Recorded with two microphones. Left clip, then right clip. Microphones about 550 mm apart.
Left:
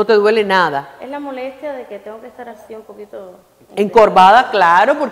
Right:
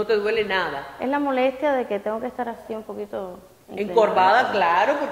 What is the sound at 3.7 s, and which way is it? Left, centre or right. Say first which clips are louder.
A woman's voice: left 9 dB; left.